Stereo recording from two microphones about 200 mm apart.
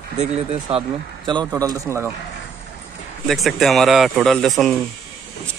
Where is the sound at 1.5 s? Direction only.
15° right (ahead or behind).